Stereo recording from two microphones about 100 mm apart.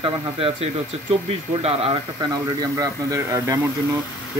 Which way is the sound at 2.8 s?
30° right (ahead or behind).